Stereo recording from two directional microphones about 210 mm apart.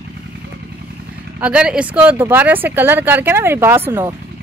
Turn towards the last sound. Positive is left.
turn(degrees=-10)  # may be behind; listen again after turning